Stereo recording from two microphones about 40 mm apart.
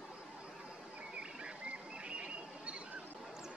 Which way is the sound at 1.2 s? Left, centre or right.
Right.